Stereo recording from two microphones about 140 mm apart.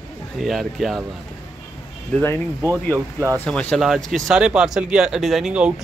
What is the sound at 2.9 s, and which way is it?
Speech, 20° right (ahead or behind).